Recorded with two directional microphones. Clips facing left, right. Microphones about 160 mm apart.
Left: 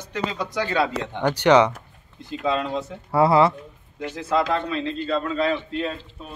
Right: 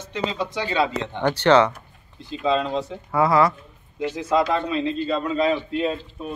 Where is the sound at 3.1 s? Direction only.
30° left (ahead or behind).